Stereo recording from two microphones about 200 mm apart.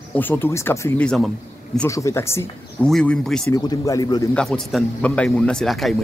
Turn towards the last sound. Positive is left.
turn(degrees=0)  # may be behind; listen again after turning